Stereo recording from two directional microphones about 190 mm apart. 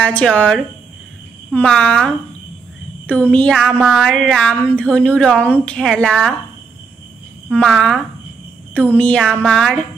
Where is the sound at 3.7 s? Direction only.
5° right (ahead or behind).